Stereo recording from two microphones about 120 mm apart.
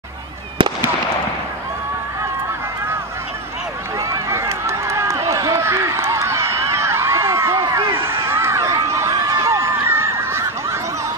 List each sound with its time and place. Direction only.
4.3 s run: 25° right (ahead or behind)